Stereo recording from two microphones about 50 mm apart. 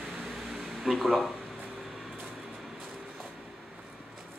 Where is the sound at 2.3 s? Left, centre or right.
Centre.